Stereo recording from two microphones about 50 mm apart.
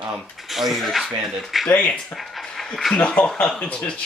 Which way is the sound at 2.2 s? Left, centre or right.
Centre.